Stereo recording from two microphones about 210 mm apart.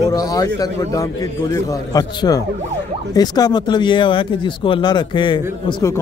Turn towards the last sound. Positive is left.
turn(degrees=20)  # may be behind; listen again after turning